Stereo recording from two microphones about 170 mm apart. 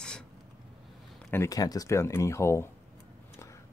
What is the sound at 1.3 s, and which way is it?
Speech, 20° left (ahead or behind).